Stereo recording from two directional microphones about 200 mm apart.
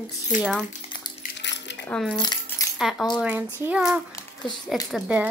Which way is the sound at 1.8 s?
5° left (ahead or behind).